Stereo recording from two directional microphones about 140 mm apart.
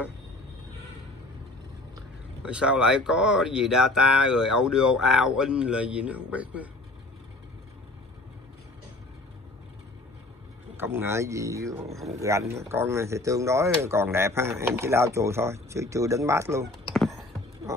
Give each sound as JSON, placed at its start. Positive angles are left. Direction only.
{"t": 2.4, "sound": "speech", "side_deg": -5}
{"t": 10.8, "sound": "speech", "side_deg": -15}
{"t": 16.9, "sound": "a sound", "side_deg": 0}
{"t": 17.7, "sound": "speech", "side_deg": -20}